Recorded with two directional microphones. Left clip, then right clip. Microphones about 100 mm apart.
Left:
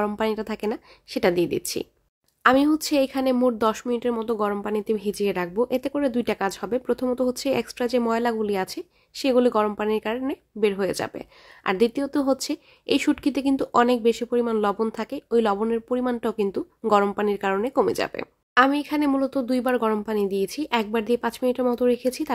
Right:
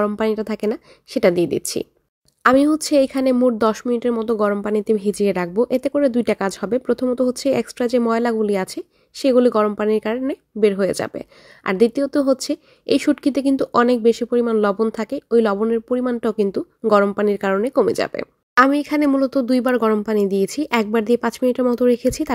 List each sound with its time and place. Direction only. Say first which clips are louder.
0.0 s speech: right 5 dB; 30° right (ahead or behind)
18.6 s speech: right 5 dB; 50° right (ahead or behind)